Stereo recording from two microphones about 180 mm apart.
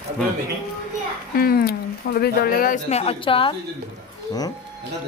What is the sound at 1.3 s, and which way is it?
Speech, 55° left (ahead or behind).